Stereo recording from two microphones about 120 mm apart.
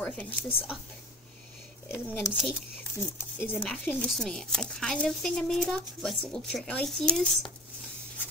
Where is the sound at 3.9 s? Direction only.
Centre (ahead or behind).